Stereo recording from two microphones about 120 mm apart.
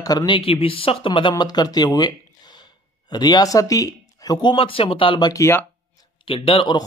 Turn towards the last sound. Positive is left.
turn(degrees=45)  # may be behind; listen again after turning